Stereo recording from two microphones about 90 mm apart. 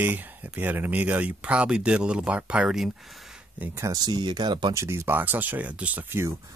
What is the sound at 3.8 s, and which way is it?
Speech, 45° right (ahead or behind).